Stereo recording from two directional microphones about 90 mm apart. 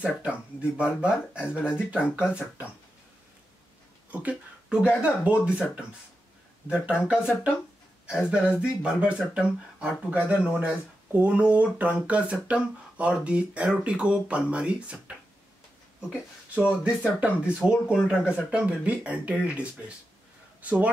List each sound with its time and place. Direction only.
0.6 s speech: 10° right (ahead or behind)
2.0 s speech: 25° left (ahead or behind)
4.1 s speech: 15° right (ahead or behind)
16.5 s speech: 10° right (ahead or behind)